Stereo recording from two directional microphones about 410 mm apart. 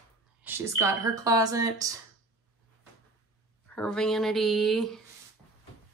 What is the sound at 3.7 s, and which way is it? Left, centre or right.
Speech, centre.